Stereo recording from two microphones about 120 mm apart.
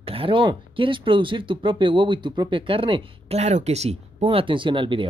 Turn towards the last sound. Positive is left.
turn(degrees=-45)  # may be behind; listen again after turning